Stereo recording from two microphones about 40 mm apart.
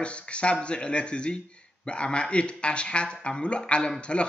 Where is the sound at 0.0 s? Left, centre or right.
Left.